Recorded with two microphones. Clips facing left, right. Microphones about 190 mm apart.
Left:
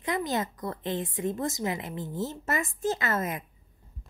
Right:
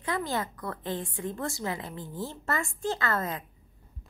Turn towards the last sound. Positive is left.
turn(degrees=20)  # may be behind; listen again after turning